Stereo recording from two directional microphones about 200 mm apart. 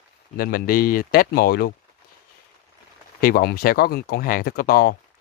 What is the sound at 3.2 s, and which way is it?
Speech, 50° left (ahead or behind).